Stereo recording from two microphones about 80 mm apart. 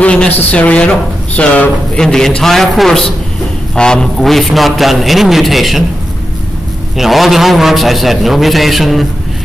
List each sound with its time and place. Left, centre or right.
0.0 s a sound: centre
0.4 s a man's voice: centre
7.0 s a man's voice: centre